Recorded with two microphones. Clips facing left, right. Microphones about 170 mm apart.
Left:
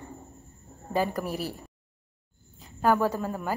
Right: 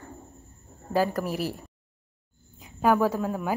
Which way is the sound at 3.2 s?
Centre (ahead or behind).